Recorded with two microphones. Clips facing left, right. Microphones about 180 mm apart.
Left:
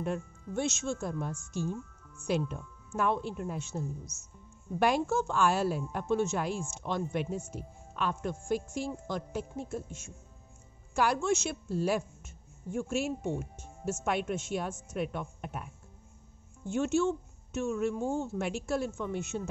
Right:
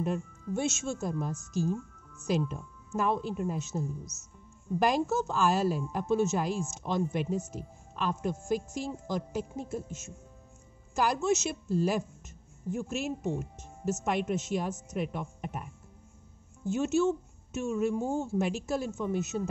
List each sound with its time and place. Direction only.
0.0 s speech: 5° right (ahead or behind)
1.3 s a woman's voice: 40° right (ahead or behind)
2.2 s speech: centre (ahead or behind)